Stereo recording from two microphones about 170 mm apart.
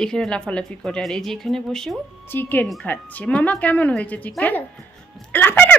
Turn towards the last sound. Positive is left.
turn(degrees=10)  # may be behind; listen again after turning